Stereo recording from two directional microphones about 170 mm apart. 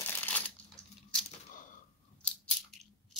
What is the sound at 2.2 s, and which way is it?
Biting, 5° left (ahead or behind).